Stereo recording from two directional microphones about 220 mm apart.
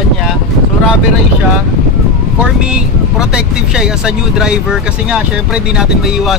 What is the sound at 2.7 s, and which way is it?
Speech, 5° right (ahead or behind).